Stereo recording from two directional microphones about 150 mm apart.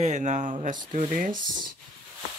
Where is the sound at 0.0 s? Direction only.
55° right (ahead or behind).